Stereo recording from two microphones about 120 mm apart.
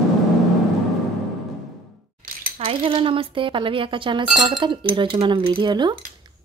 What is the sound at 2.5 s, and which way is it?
A woman's voice, 50° right (ahead or behind).